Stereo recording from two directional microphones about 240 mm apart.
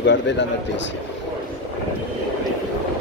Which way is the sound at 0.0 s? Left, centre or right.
Left.